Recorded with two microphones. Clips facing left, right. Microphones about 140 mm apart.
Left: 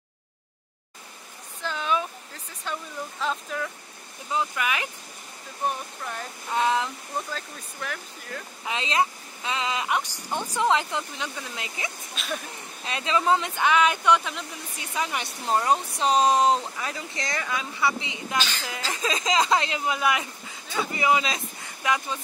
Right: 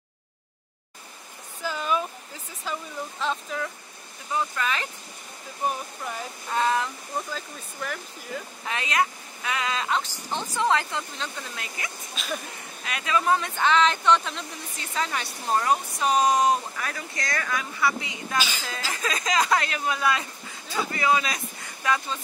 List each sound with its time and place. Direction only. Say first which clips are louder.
1.6 s speech: even; 5° right (ahead or behind)
4.3 s speech: even; 15° left (ahead or behind)
6.5 s speech: even; 15° left (ahead or behind)
7.3 s speech: right 1 dB; centre (ahead or behind)
8.6 s speech: left 1 dB; 20° left (ahead or behind)
12.2 s speech: even; centre (ahead or behind)
12.8 s speech: left 1 dB; 25° left (ahead or behind)
18.4 s speech: even; 10° right (ahead or behind)
18.9 s speech: left 2 dB; 25° left (ahead or behind)